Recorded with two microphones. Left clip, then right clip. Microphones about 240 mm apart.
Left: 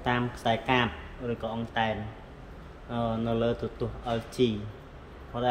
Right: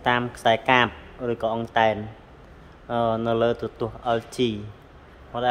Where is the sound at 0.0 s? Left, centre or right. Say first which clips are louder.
Right 7 dB; centre.